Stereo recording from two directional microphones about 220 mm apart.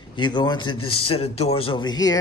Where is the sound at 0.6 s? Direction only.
80° left.